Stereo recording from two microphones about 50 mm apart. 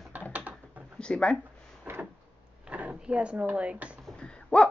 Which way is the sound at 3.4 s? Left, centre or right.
Right.